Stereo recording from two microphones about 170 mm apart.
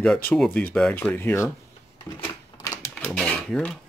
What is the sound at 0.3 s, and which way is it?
Speech, 10° left (ahead or behind).